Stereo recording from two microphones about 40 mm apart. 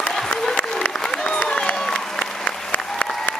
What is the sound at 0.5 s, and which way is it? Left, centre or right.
Applause, left.